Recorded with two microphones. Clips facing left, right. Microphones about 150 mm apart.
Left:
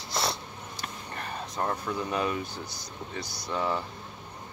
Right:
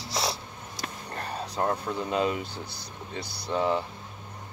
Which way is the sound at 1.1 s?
35° right (ahead or behind).